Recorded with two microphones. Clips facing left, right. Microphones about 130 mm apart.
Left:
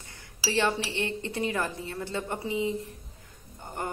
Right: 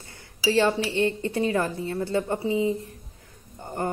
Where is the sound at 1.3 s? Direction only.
30° right (ahead or behind).